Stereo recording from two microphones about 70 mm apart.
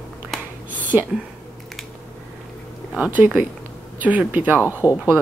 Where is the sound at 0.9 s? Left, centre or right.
Centre.